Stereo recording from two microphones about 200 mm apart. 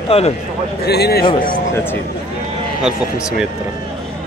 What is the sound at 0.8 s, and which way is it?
Speech, 55° left (ahead or behind).